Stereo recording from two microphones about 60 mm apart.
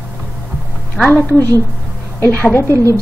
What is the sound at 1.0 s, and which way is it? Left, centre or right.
Speech, centre.